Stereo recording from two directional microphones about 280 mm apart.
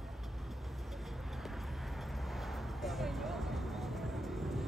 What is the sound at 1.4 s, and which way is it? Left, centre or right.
Vehicle, centre.